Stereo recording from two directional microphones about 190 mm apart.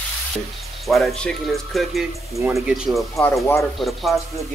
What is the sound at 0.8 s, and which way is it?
Speech, centre (ahead or behind).